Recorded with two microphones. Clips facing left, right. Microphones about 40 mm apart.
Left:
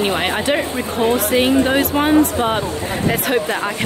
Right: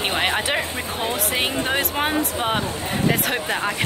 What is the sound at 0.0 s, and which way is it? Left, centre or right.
Speech, centre.